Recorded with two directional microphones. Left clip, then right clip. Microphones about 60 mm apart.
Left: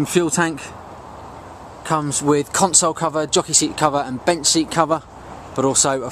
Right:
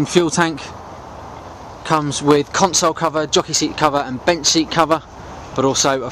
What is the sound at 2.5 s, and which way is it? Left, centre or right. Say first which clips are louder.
Speech: right 2 dB; left.